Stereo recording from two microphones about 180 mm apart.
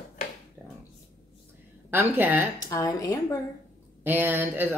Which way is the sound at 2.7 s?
20° left (ahead or behind).